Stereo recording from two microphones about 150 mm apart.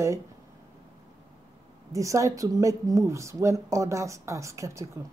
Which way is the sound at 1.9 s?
20° right (ahead or behind).